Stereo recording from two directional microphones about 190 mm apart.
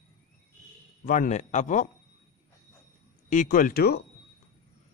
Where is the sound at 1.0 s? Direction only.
40° left (ahead or behind).